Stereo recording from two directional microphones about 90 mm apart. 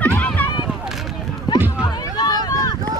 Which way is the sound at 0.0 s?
15° left (ahead or behind).